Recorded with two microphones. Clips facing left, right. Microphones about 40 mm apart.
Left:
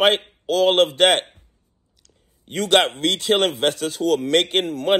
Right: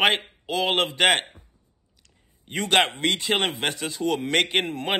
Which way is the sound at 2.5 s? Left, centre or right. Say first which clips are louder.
Left 4 dB; right.